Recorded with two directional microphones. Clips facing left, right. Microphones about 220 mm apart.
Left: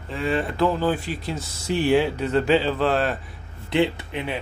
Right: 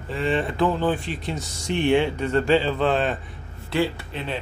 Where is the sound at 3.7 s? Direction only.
20° left (ahead or behind).